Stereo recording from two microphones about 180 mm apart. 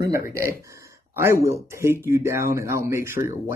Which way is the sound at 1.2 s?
15° right (ahead or behind).